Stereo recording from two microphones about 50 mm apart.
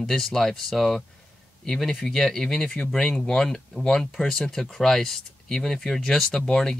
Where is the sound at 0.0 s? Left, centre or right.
Centre.